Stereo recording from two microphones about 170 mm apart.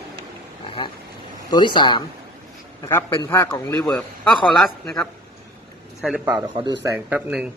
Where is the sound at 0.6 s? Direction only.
30° left (ahead or behind).